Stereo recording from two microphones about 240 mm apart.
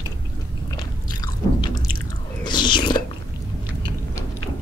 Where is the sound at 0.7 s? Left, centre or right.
Centre.